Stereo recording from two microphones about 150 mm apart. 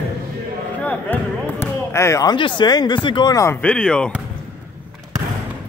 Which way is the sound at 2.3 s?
30° left (ahead or behind).